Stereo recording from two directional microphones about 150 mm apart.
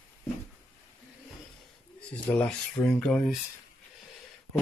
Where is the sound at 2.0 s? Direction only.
5° left (ahead or behind).